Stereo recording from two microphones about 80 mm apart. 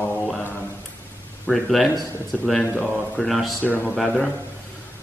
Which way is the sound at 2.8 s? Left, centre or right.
Centre.